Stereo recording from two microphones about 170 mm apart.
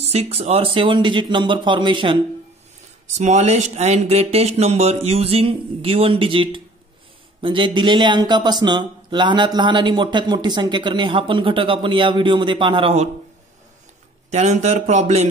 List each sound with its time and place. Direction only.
0.0 s speech: 40° right (ahead or behind)
3.2 s speech: 40° right (ahead or behind)
14.3 s speech: 45° right (ahead or behind)